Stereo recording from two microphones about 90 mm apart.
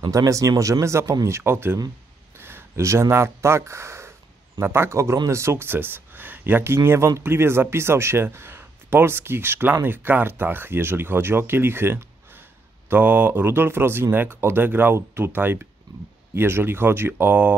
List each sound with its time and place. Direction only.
0.1 s speech: 40° right (ahead or behind); by 17.6 s 20° right (ahead or behind)